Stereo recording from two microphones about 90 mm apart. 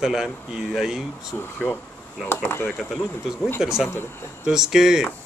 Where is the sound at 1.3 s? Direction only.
25° left (ahead or behind).